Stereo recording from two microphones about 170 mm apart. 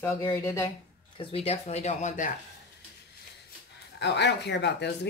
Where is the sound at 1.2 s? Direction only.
35° left (ahead or behind).